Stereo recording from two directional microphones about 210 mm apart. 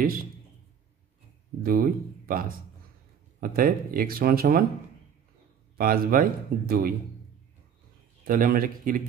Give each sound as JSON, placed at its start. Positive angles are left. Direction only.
{"t": 0.0, "sound": "speech", "side_deg": -45}
{"t": 1.6, "sound": "speech", "side_deg": -45}
{"t": 5.8, "sound": "speech", "side_deg": -45}
{"t": 8.3, "sound": "speech", "side_deg": -45}